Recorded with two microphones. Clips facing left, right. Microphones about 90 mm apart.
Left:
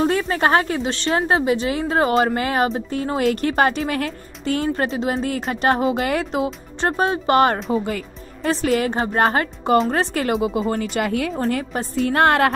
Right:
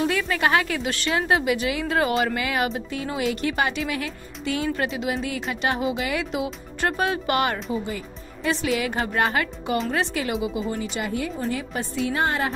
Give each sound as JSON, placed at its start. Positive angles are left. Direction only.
{"t": 0.0, "sound": "a woman's voice", "side_deg": 35}
{"t": 7.7, "sound": "speech", "side_deg": 60}
{"t": 8.4, "sound": "a woman's voice", "side_deg": 40}
{"t": 11.4, "sound": "a woman's voice", "side_deg": 40}